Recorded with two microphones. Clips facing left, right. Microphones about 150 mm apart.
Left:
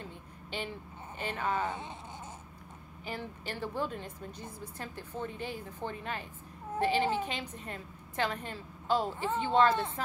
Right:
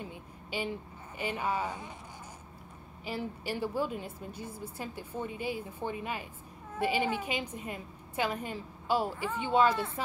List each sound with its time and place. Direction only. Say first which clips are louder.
0.0 s a sound: right 2 dB; 10° right (ahead or behind)
1.1 s a woman's voice: right 1 dB; 10° right (ahead or behind)
1.7 s speech: left 2 dB; 25° left (ahead or behind)
3.1 s a woman's voice: right 4 dB; 10° right (ahead or behind)